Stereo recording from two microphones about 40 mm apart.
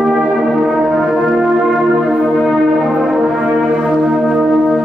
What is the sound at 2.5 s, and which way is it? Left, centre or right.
Church bell, centre.